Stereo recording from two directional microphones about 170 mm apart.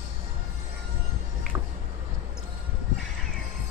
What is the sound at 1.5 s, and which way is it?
Music, 15° right (ahead or behind).